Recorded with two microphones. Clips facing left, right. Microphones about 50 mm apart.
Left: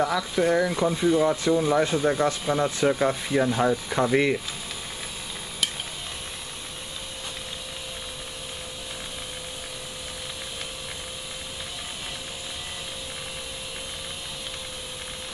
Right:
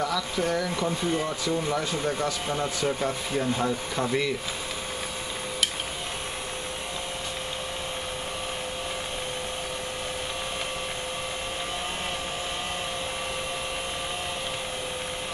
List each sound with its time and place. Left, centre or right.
0.0 s speech: left
1.5 s speech: centre
1.8 s speech: left
2.5 s speech: centre